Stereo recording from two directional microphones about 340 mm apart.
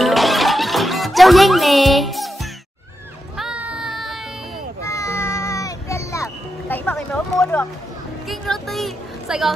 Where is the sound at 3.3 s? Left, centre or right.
Centre.